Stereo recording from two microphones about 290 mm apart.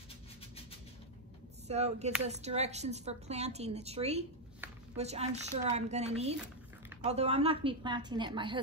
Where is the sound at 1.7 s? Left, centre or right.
Right.